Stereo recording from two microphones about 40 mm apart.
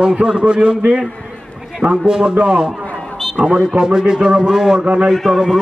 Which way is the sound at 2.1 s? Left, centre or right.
Right.